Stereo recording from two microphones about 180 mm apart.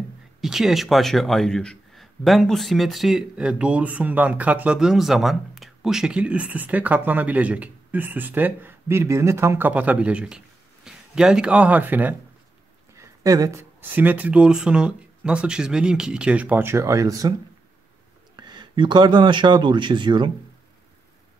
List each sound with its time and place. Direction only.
0.4 s speech: centre (ahead or behind); by 17.3 s 20° right (ahead or behind)
18.3 s speech: 25° right (ahead or behind)